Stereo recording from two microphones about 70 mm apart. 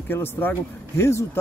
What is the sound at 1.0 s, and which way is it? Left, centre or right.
Speech, left.